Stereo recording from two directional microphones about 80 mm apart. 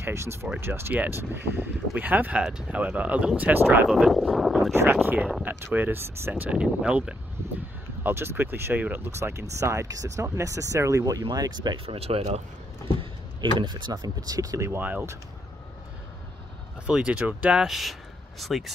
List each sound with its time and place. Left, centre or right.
0.0 s speech: right
2.4 s speech: centre
2.7 s speech: centre
3.9 s speech: centre
5.0 s speech: right
8.0 s speech: right
11.2 s speech: right
13.4 s speech: right
14.8 s speech: right
16.8 s speech: centre